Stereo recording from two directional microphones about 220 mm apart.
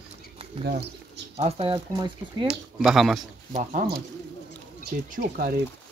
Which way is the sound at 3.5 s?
35° right (ahead or behind).